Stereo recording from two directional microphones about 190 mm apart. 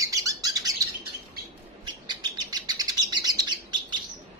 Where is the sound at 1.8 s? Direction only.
25° right (ahead or behind).